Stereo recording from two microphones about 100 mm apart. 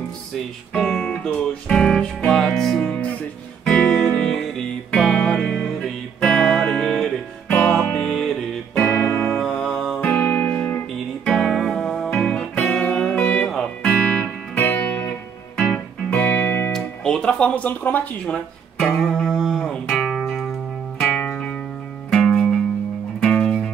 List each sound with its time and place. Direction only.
0.7 s music: 5° left (ahead or behind)
8.7 s music: 25° left (ahead or behind)
9.3 s music: 10° left (ahead or behind)
9.9 s music: 20° left (ahead or behind)
11.2 s music: 5° left (ahead or behind)
12.1 s music: 10° left (ahead or behind)
16.7 s guitar: 5° left (ahead or behind)
21.0 s music: 5° left (ahead or behind)